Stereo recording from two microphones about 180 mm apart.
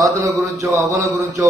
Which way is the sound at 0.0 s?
15° right (ahead or behind).